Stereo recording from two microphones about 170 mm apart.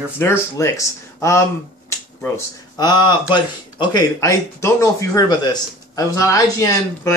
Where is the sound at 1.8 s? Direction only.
15° left (ahead or behind).